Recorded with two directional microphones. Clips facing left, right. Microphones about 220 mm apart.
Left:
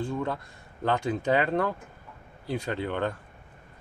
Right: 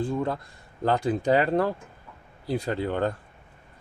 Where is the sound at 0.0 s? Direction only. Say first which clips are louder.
Right 3 dB; 35° right (ahead or behind).